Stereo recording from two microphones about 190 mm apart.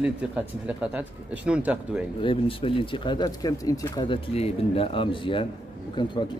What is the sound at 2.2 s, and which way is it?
Speech, 30° left (ahead or behind).